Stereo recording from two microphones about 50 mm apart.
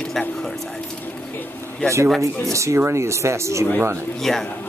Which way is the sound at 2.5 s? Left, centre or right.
Right.